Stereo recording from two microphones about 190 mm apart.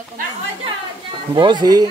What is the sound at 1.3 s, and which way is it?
Speech, 25° right (ahead or behind).